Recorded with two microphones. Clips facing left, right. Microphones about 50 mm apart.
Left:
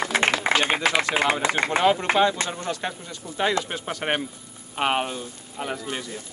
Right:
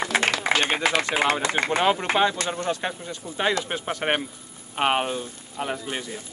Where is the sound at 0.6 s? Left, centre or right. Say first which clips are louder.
Left 1 dB; centre.